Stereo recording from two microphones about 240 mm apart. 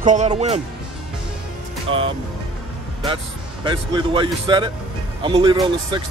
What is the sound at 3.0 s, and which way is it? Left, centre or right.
A man's voice, centre.